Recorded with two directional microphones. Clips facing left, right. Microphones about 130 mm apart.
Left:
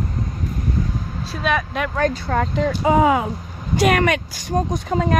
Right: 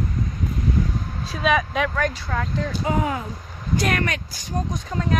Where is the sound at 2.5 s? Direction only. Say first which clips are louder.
Left 7 dB; 90° left.